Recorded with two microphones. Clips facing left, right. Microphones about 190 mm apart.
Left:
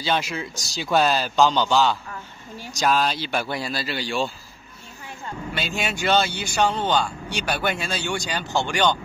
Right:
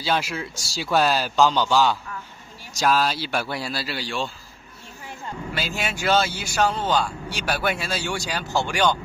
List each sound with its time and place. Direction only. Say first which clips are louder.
0.0 s a man's voice: even; 5° right (ahead or behind)
5.5 s a man's voice: left 1 dB; 5° right (ahead or behind)